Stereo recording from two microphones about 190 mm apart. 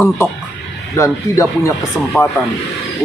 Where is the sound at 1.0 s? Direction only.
15° left (ahead or behind).